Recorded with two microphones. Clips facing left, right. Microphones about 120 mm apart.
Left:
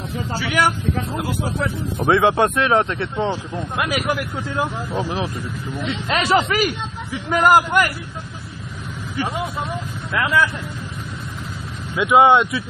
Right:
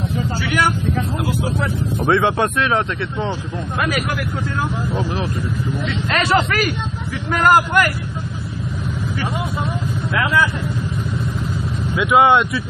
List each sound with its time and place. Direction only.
0.5 s speech: centre (ahead or behind); by 3.3 s 25° left (ahead or behind)
4.6 s speech: 15° left (ahead or behind)
12.1 s speech: centre (ahead or behind)